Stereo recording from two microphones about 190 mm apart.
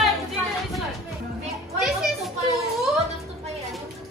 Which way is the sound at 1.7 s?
Centre (ahead or behind).